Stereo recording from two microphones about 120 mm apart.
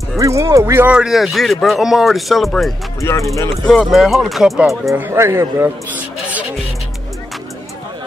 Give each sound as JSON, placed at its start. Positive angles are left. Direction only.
{"t": 0.2, "sound": "speech", "side_deg": -25}
{"t": 0.9, "sound": "speech", "side_deg": -5}
{"t": 3.0, "sound": "speech", "side_deg": 25}
{"t": 3.6, "sound": "speech", "side_deg": 0}
{"t": 4.9, "sound": "speech", "side_deg": -20}